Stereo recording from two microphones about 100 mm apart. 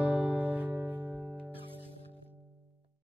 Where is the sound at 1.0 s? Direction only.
10° right (ahead or behind).